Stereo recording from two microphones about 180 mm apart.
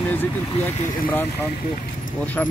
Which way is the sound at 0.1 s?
10° left (ahead or behind).